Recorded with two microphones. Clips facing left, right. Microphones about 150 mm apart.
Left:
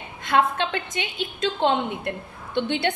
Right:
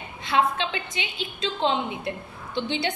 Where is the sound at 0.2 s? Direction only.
50° left (ahead or behind).